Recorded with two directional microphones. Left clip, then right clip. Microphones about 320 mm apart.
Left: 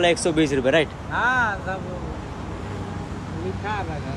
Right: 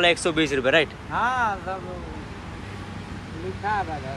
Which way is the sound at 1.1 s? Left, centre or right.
Centre.